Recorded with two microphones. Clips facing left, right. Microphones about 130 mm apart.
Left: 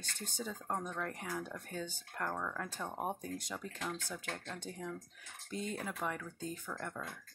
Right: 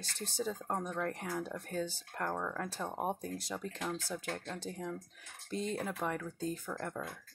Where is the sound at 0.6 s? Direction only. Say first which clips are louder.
Right 3 dB; 20° right (ahead or behind).